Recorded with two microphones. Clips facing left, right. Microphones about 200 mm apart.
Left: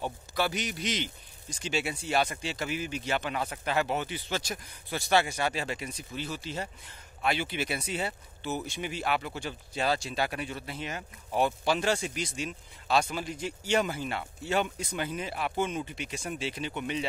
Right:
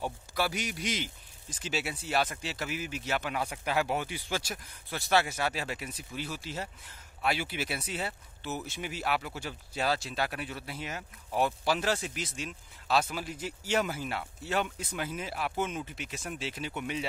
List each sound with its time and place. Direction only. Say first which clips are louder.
0.0 s speech: left 1 dB; 5° right (ahead or behind)